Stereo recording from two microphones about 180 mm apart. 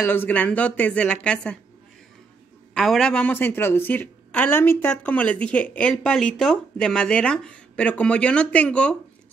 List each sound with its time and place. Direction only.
0.0 s a woman's voice: 10° left (ahead or behind)
2.7 s a woman's voice: centre (ahead or behind)